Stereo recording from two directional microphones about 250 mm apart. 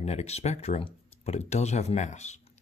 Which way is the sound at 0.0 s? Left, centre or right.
Left.